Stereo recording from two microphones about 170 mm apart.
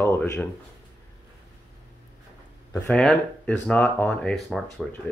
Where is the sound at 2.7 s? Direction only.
5° left (ahead or behind).